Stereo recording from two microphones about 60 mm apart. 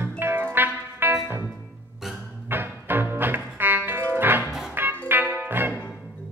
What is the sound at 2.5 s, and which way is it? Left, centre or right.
Music, right.